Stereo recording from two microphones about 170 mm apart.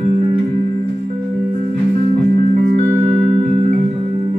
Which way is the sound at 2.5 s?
40° right (ahead or behind).